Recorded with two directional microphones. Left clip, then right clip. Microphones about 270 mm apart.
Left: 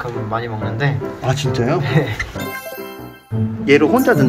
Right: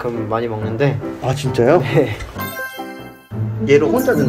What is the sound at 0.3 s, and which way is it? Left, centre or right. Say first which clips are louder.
Speech: right 2 dB; right.